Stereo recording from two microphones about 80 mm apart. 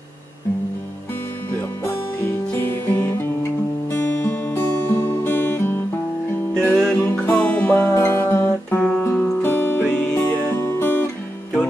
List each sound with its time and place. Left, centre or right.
2.9 s music: left
6.5 s music: centre
7.9 s music: left
10.1 s music: left